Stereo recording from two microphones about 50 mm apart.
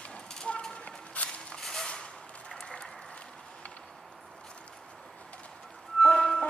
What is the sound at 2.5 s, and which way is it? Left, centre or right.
Applause, centre.